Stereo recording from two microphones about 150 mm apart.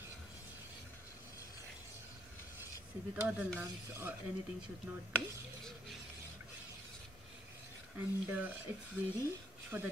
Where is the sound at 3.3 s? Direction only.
10° right (ahead or behind).